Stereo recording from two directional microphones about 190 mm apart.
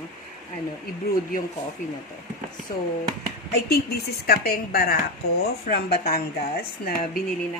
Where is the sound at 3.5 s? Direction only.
55° left (ahead or behind).